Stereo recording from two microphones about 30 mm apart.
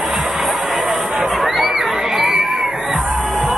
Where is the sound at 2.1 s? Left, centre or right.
Centre.